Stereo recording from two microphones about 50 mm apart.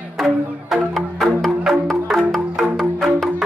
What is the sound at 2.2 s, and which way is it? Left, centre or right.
Music, centre.